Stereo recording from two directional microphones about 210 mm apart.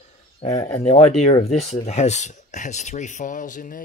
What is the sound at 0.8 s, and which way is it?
Speech, 30° left (ahead or behind).